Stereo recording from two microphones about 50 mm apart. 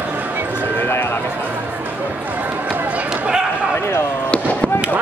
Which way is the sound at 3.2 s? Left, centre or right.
Centre.